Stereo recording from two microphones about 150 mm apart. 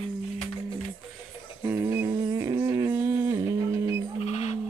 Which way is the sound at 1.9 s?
20° right (ahead or behind).